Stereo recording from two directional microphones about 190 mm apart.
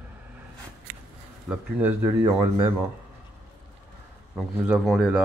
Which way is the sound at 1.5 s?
10° right (ahead or behind).